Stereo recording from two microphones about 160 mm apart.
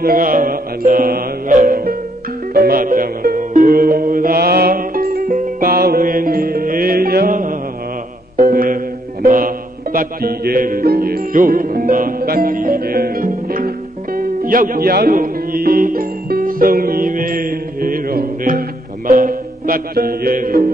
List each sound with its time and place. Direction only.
0.0 s music: 60° right (ahead or behind)